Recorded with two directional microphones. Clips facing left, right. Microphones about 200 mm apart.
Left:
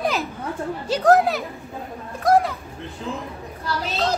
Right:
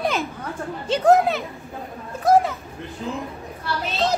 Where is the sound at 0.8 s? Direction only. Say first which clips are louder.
Even; centre (ahead or behind).